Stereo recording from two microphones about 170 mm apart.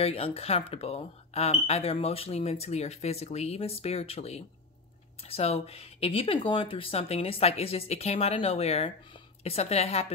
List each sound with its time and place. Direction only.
0.0 s speech: 35° left (ahead or behind)